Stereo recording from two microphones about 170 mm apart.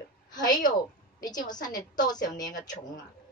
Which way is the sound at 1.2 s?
25° left (ahead or behind).